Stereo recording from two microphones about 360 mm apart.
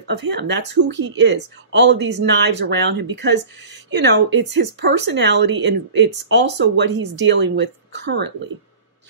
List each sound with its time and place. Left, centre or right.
0.0 s speech: right